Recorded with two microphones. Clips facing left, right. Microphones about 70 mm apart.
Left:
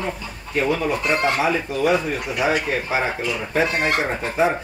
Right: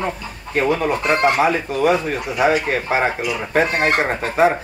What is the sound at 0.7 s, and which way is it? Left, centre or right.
Speech, right.